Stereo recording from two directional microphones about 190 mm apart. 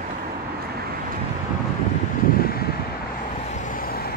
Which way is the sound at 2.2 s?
50° left (ahead or behind).